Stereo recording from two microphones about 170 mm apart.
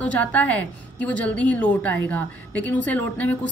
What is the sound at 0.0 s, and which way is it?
A woman's voice, 10° left (ahead or behind).